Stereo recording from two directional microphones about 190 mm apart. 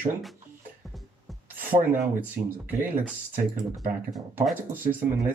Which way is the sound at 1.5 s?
10° right (ahead or behind).